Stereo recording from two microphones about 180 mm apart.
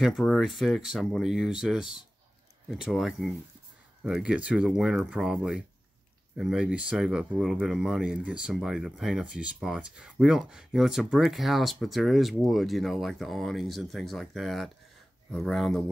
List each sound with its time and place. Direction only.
0.0 s speech: centre (ahead or behind)